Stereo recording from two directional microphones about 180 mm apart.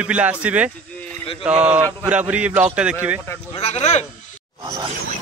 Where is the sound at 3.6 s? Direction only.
35° left (ahead or behind).